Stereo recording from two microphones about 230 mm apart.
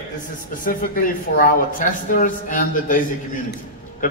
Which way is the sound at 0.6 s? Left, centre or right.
Left.